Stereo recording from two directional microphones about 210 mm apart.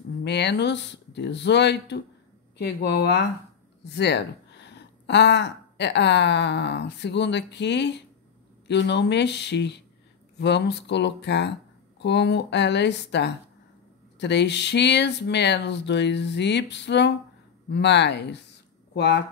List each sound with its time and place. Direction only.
0.2 s speech: 55° left (ahead or behind)